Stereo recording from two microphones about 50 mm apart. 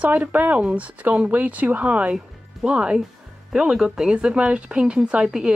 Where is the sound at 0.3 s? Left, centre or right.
Right.